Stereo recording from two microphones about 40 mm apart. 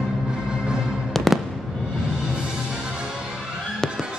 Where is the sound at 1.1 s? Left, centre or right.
Centre.